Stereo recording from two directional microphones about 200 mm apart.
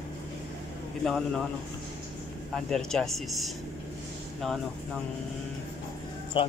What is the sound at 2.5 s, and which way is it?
Speech, centre (ahead or behind).